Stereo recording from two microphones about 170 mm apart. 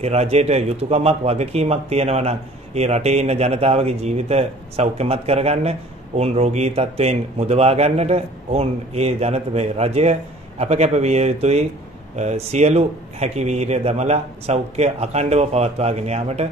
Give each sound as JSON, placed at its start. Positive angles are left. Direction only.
{"t": 0.0, "sound": "speech", "side_deg": -40}